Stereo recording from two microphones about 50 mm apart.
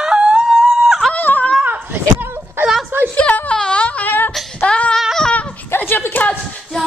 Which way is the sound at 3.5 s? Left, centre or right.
Centre.